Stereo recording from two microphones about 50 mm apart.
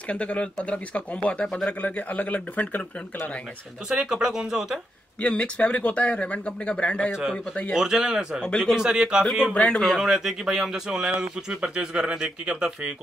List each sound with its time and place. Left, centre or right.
0.1 s speech: left
4.0 s speech: centre
5.2 s speech: left
7.7 s speech: centre
9.5 s speech: left
9.8 s speech: centre